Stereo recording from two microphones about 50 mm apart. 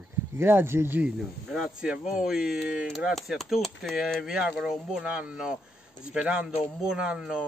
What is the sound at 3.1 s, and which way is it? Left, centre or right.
Speech, centre.